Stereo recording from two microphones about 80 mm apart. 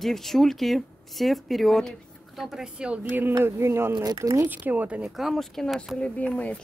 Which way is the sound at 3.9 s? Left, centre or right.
Right.